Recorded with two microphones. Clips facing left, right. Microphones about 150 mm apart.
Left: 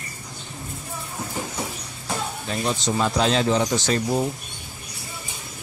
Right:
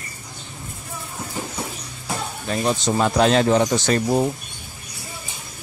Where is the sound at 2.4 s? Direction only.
55° right (ahead or behind).